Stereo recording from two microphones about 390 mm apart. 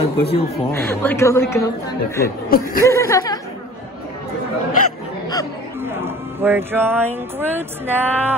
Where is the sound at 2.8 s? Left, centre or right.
Centre.